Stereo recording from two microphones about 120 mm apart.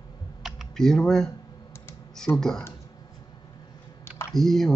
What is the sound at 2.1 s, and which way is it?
Speech, 5° left (ahead or behind).